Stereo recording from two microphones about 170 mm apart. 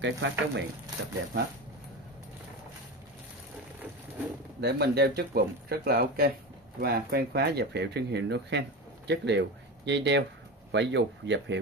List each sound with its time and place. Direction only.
0.0 s speech: 90° right
4.6 s speech: 75° right (ahead or behind); by 11.5 s 90° right